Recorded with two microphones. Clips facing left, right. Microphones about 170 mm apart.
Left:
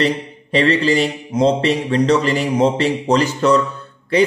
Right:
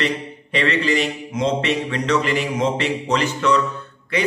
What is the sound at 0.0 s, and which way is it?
A man's voice, 35° left (ahead or behind).